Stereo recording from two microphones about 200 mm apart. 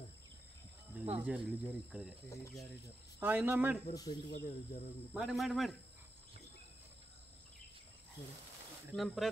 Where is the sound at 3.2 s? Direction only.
10° right (ahead or behind).